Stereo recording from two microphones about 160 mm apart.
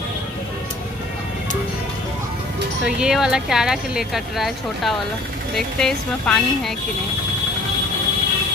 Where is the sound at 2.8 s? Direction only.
5° right (ahead or behind).